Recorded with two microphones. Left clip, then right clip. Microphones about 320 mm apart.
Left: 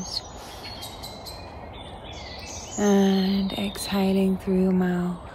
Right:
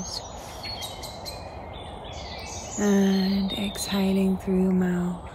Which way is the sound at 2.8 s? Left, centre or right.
Centre.